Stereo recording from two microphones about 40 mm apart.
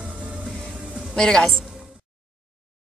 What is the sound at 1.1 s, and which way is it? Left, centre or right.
Speech, centre.